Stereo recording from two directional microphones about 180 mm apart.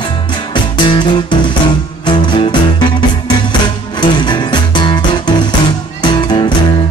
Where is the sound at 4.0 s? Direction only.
25° left (ahead or behind).